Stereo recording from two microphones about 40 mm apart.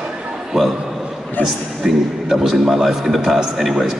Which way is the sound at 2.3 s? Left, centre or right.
Centre.